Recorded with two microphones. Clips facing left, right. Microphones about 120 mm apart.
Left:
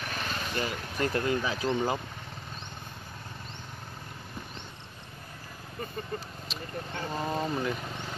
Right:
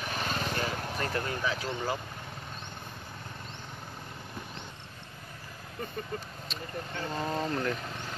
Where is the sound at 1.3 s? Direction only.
20° left (ahead or behind).